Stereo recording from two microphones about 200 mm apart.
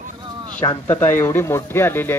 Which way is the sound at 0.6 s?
10° left (ahead or behind).